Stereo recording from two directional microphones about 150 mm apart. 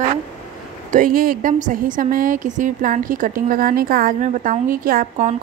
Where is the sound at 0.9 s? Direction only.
70° right (ahead or behind).